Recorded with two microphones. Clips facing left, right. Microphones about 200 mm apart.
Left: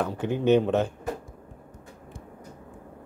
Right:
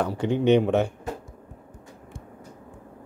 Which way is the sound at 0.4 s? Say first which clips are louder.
Right 1 dB; 15° right (ahead or behind).